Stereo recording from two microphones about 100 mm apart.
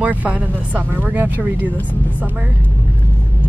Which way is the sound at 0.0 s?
15° right (ahead or behind).